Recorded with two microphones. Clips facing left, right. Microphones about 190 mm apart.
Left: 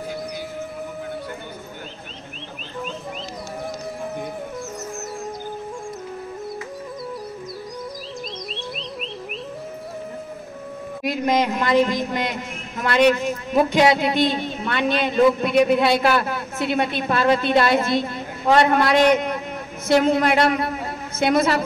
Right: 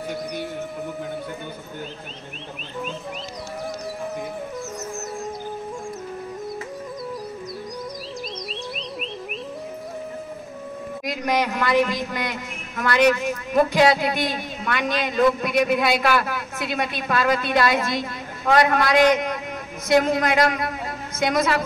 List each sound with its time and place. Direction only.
8.3 s music: centre (ahead or behind)
11.1 s a woman's voice: 25° left (ahead or behind)